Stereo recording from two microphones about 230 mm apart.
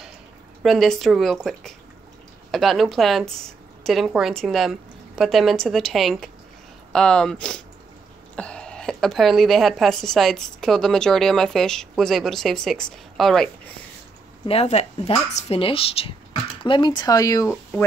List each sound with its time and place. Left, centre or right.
0.6 s a woman's voice: centre
14.4 s speech: left